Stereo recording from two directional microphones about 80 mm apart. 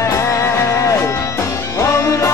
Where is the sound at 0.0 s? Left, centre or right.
Left.